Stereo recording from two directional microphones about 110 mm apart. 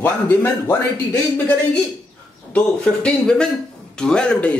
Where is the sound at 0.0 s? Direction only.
20° left (ahead or behind).